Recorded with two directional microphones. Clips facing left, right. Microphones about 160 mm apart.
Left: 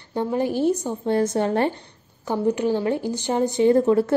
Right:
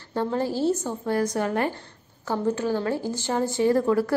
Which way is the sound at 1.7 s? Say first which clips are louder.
Left 3 dB; 15° left (ahead or behind).